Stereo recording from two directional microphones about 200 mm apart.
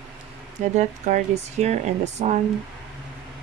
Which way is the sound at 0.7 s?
35° right (ahead or behind).